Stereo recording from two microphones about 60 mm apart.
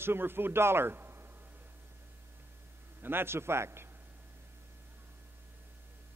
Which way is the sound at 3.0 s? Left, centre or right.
Right.